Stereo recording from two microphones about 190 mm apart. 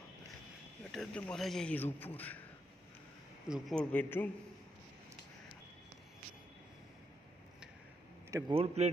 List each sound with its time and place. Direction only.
0.9 s a man's voice: 5° left (ahead or behind)
3.4 s a man's voice: centre (ahead or behind)
8.3 s a man's voice: 15° right (ahead or behind)
8.8 s speech: 35° right (ahead or behind)